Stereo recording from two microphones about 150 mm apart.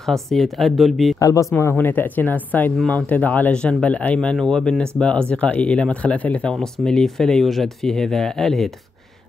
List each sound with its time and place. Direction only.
0.0 s speech: centre (ahead or behind)
1.2 s speech: 20° left (ahead or behind); by 8.7 s centre (ahead or behind)